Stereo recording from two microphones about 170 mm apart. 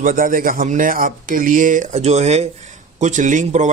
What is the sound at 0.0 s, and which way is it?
Speech, 50° right (ahead or behind).